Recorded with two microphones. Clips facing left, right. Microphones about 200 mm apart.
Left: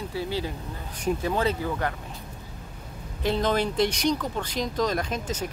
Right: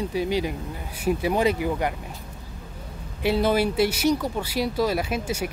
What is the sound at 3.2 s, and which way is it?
Speech, 10° right (ahead or behind).